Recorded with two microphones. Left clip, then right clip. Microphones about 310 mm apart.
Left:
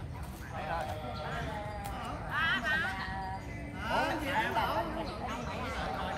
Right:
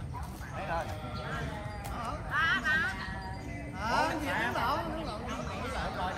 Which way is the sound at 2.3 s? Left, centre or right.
Centre.